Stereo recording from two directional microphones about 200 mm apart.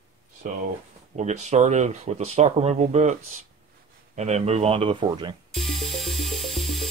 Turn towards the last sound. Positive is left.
turn(degrees=0)  # may be behind; listen again after turning